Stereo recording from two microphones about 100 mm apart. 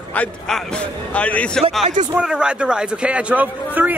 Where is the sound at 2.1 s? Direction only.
10° right (ahead or behind).